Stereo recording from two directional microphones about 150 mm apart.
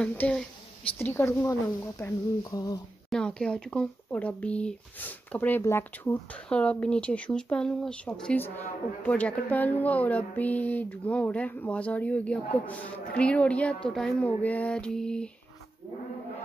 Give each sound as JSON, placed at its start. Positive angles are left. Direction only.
{"t": 0.0, "sound": "speech", "side_deg": 10}
{"t": 3.1, "sound": "speech", "side_deg": 5}